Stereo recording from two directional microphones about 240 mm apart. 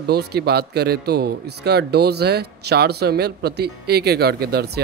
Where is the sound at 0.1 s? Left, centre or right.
Right.